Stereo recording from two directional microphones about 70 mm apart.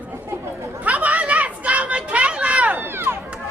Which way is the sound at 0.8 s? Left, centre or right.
Right.